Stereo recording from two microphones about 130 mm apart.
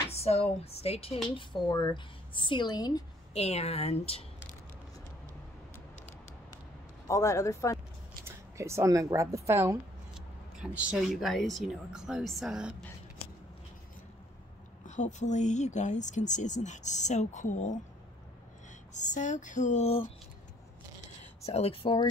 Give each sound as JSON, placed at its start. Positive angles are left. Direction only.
{"t": 0.1, "sound": "speech", "side_deg": 50}
{"t": 1.3, "sound": "speech", "side_deg": 35}
{"t": 3.3, "sound": "speech", "side_deg": 55}
{"t": 7.1, "sound": "speech", "side_deg": 25}
{"t": 8.3, "sound": "speech", "side_deg": -20}
{"t": 10.1, "sound": "speech", "side_deg": -5}
{"t": 14.9, "sound": "speech", "side_deg": 65}
{"t": 18.9, "sound": "speech", "side_deg": 70}
{"t": 21.4, "sound": "speech", "side_deg": 50}